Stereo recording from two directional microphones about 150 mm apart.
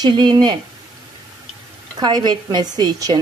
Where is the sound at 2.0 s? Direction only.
30° right (ahead or behind).